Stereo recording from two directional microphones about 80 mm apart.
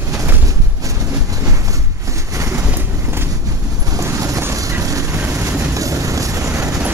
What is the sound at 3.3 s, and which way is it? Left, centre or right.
Vehicle, right.